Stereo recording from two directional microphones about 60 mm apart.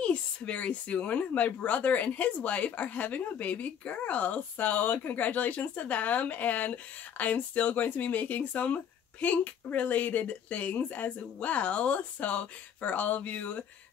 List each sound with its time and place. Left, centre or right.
0.0 s a woman's voice: left